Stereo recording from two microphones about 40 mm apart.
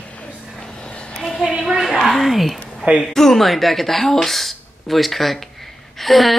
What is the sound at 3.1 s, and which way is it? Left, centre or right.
Speech, centre.